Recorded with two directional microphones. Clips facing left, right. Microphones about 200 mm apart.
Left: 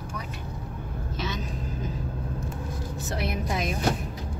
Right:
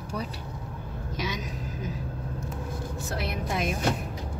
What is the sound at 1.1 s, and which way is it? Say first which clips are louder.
Speech: even; 10° right (ahead or behind).